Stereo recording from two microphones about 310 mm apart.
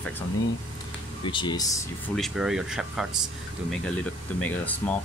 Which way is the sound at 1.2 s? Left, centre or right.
Centre.